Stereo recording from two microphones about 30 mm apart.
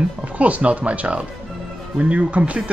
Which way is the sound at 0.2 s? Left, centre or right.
Right.